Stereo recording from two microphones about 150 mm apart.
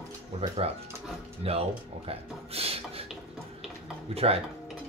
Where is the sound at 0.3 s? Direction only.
45° right (ahead or behind).